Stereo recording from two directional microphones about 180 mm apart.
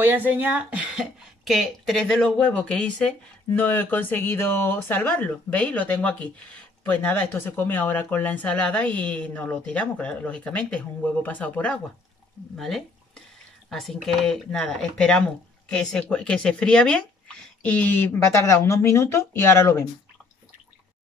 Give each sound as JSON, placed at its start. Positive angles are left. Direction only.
{"t": 0.0, "sound": "speech", "side_deg": -10}